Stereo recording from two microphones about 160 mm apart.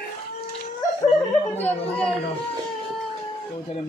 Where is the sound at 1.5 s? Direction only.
10° left (ahead or behind).